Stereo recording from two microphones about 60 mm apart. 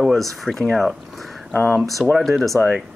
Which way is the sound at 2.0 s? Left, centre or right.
Centre.